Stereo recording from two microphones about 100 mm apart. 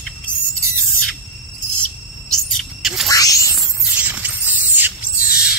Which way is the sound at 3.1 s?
35° left (ahead or behind).